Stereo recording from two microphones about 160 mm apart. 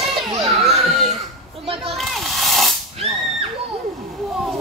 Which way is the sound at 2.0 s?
Centre (ahead or behind).